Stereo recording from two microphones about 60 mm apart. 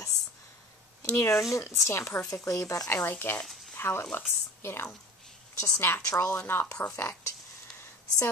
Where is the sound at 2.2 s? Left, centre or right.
Left.